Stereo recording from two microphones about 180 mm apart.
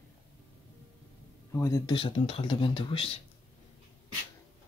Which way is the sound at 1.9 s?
30° left (ahead or behind).